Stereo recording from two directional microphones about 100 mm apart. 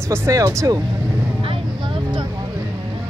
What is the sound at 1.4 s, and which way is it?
Vehicle, 60° right (ahead or behind).